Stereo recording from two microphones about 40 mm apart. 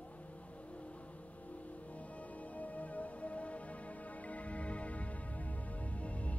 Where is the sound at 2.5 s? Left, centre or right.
Left.